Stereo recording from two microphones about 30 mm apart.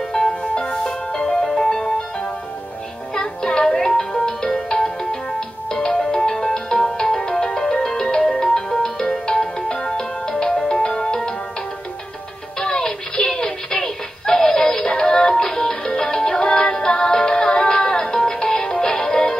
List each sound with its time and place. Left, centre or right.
0.1 s music: left
3.2 s music: left
5.7 s music: left
12.5 s music: left